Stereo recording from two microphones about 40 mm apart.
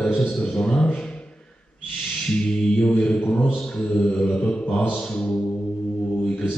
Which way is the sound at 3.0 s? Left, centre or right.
Left.